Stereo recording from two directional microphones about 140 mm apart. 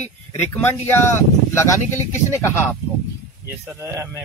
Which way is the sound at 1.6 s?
20° left (ahead or behind).